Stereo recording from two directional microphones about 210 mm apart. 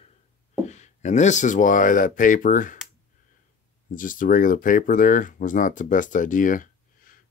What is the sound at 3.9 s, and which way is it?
Speech, 40° left (ahead or behind).